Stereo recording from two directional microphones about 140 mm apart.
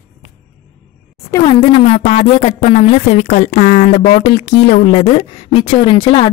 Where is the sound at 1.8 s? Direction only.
50° left (ahead or behind); by 4.8 s 80° left.